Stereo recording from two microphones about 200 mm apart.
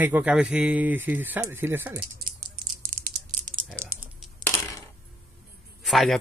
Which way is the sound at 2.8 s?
45° right (ahead or behind).